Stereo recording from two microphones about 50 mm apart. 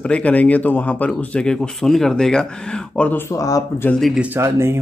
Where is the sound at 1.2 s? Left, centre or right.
Left.